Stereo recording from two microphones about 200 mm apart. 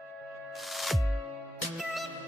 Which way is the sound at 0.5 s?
Centre (ahead or behind).